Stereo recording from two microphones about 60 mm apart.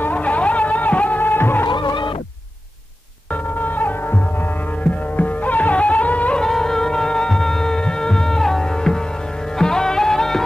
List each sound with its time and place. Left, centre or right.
0.0 s music: left
3.6 s hum: left
5.1 s music: left
6.4 s music: centre